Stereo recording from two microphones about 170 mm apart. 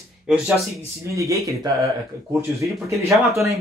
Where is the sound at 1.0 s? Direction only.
20° right (ahead or behind).